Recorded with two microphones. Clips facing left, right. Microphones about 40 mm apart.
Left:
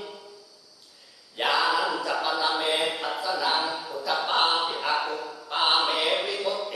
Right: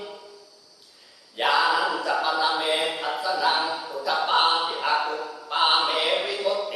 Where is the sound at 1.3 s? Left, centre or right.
Centre.